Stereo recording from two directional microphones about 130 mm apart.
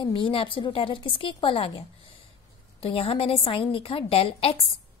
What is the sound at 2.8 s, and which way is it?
A woman's voice, 45° left (ahead or behind).